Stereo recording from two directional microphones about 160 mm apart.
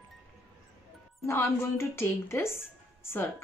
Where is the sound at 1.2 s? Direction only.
15° left (ahead or behind).